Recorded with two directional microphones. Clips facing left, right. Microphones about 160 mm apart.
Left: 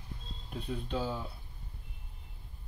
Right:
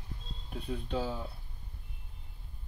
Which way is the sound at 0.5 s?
5° right (ahead or behind).